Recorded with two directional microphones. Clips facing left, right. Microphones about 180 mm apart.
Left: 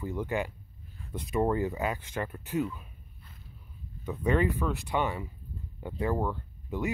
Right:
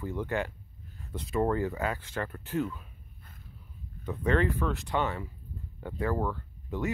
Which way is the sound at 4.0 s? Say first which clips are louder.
Even; 10° left (ahead or behind).